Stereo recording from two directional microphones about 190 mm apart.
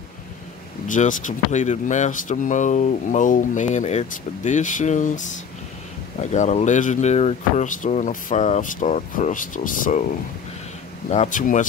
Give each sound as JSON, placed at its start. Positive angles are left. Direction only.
{"t": 0.8, "sound": "speech", "side_deg": 40}
{"t": 6.3, "sound": "speech", "side_deg": 40}
{"t": 11.1, "sound": "speech", "side_deg": 40}